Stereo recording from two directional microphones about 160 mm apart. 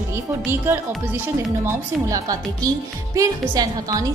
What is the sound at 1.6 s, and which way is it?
Speech, 20° right (ahead or behind).